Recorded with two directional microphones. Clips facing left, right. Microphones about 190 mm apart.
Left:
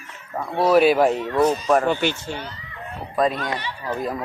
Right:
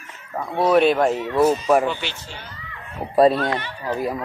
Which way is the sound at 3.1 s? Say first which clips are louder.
Right 6 dB; 35° right (ahead or behind).